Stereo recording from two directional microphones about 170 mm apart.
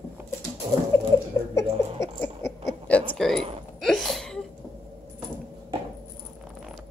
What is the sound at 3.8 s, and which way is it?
Sneeze, centre (ahead or behind).